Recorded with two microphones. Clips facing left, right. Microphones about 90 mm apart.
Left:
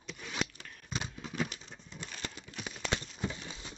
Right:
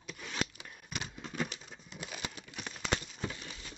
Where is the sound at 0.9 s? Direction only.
25° left (ahead or behind).